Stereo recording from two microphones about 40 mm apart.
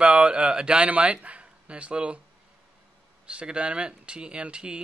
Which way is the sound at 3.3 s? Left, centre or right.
Right.